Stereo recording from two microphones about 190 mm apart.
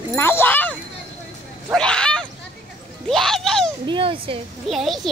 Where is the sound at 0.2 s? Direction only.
10° left (ahead or behind).